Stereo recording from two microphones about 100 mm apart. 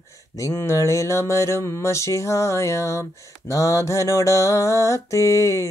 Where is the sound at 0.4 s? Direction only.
25° left (ahead or behind).